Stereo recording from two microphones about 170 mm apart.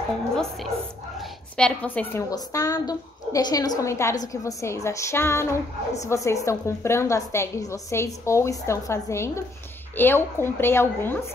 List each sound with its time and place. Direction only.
1.2 s a woman's voice: 5° left (ahead or behind)
2.3 s a woman's voice: 20° left (ahead or behind)